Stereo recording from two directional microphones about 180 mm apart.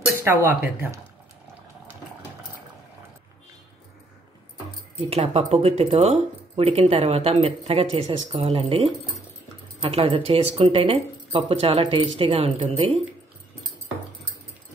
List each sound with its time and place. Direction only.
0.2 s speech: 10° right (ahead or behind)
5.1 s speech: 35° right (ahead or behind)